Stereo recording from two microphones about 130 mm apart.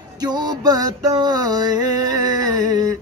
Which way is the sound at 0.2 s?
30° right (ahead or behind).